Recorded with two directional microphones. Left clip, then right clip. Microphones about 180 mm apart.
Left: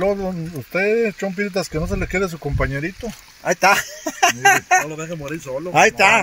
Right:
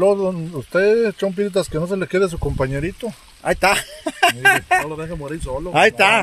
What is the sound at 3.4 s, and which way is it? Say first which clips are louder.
Speech: left 1 dB; 5° right (ahead or behind).